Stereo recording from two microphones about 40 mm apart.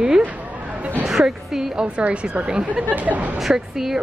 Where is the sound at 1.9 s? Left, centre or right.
Right.